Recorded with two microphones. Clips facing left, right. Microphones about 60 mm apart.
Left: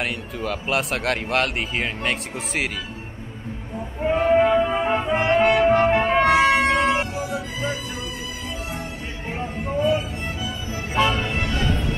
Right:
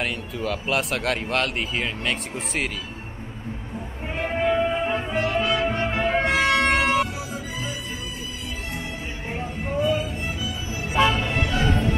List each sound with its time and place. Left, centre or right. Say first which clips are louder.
0.0 s speech: even; centre
4.1 s music: left 6 dB; left
7.2 s music: left 4 dB; left
10.4 s music: left 1 dB; left
11.0 s music: even; centre
11.3 s music: right 1 dB; centre